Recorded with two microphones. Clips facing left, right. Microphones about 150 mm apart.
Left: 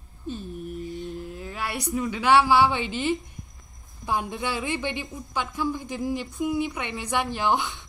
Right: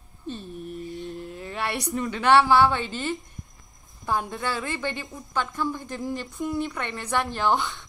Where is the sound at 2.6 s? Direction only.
20° left (ahead or behind).